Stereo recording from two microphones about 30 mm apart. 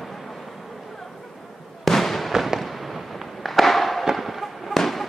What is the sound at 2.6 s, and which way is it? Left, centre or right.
Fireworks, centre.